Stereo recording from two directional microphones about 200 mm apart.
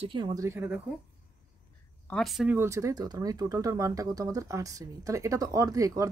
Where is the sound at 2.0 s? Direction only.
Centre (ahead or behind).